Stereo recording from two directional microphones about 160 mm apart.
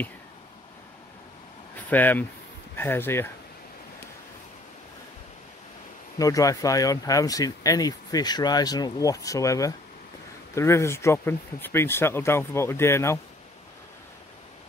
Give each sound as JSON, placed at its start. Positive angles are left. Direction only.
{"t": 1.9, "sound": "speech", "side_deg": 10}
{"t": 6.1, "sound": "speech", "side_deg": 20}